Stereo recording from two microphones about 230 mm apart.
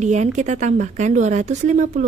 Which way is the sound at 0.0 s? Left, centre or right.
Right.